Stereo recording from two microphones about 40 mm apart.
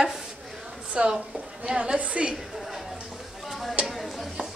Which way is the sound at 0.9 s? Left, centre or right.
Right.